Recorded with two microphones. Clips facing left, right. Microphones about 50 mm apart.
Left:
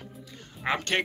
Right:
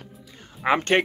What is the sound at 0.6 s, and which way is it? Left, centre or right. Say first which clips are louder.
Speech: right 7 dB; centre.